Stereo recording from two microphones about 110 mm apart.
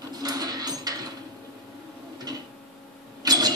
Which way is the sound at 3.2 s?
35° right (ahead or behind).